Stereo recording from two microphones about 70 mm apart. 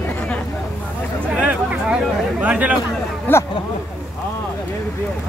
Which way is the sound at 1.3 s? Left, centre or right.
Centre.